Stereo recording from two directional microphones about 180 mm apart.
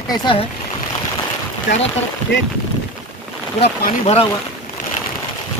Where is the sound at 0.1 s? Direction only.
25° left (ahead or behind).